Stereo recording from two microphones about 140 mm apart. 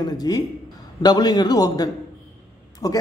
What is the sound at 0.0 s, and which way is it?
Speech, 30° left (ahead or behind).